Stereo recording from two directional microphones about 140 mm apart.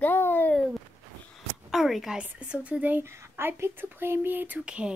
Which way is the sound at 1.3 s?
Centre (ahead or behind).